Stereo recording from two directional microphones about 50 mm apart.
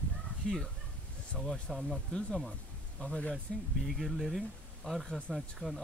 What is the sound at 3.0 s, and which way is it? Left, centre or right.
Speech, left.